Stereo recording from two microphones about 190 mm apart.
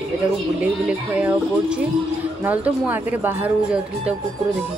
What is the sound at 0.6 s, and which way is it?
Speech, 5° right (ahead or behind).